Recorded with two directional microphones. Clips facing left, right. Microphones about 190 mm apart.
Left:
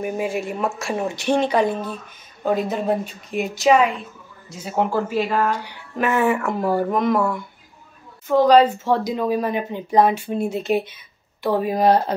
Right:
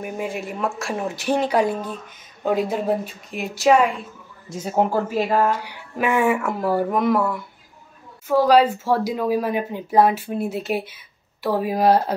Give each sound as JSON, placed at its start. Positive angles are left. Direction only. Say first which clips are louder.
{"t": 0.0, "sound": "speech", "louder": "left 4 dB", "side_deg": 0}
{"t": 4.5, "sound": "speech", "louder": "right 2 dB", "side_deg": -45}
{"t": 5.5, "sound": "speech", "louder": "right 1 dB", "side_deg": -10}